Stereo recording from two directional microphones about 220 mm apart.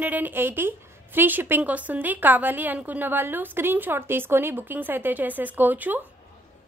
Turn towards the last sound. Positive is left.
turn(degrees=-10)  # may be behind; listen again after turning